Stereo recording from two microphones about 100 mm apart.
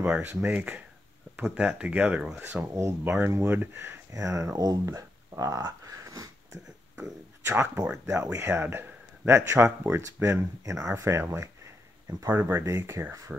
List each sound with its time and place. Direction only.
0.0 s speech: 15° right (ahead or behind)
2.6 s speech: 25° right (ahead or behind)
7.4 s speech: 25° right (ahead or behind)